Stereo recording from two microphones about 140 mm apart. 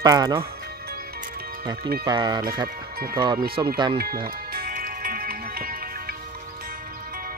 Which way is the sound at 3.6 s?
25° right (ahead or behind).